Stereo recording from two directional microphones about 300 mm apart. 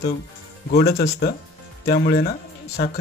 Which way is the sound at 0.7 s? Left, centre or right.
Left.